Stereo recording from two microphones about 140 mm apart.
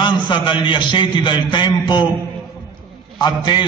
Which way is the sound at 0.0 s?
35° left (ahead or behind).